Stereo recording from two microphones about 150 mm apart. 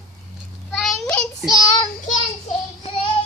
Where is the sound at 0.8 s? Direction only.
5° left (ahead or behind).